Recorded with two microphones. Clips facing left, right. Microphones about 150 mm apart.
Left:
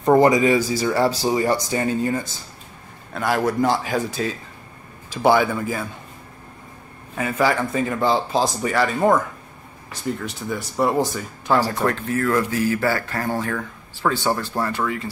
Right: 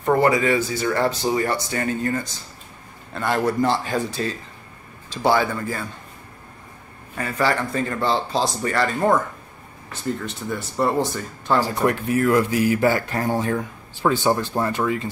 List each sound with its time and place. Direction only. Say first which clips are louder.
0.0 s speech: left 3 dB; 15° left (ahead or behind)
3.2 s speech: left 1 dB; centre (ahead or behind)
5.1 s speech: left 2 dB; 15° left (ahead or behind)
7.2 s speech: left 2 dB; 10° left (ahead or behind)
11.6 s speech: right 1 dB; 15° right (ahead or behind)